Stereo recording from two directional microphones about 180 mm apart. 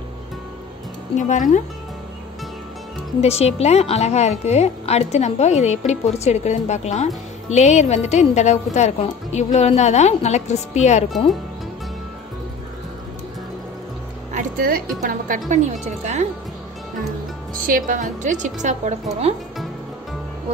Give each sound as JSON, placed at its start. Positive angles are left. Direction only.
{"t": 1.1, "sound": "speech", "side_deg": 40}
{"t": 3.2, "sound": "a woman's voice", "side_deg": 35}
{"t": 14.3, "sound": "music", "side_deg": -55}
{"t": 15.0, "sound": "a woman's voice", "side_deg": -50}
{"t": 17.6, "sound": "a woman's voice", "side_deg": -50}